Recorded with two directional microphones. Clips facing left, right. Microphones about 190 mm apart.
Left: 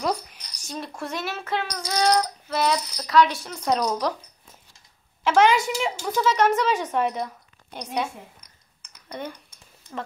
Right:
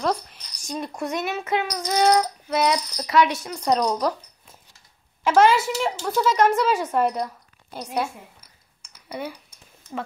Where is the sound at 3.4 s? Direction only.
Centre (ahead or behind).